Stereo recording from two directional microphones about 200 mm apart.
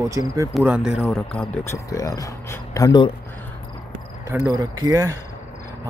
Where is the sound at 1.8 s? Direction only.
15° left (ahead or behind).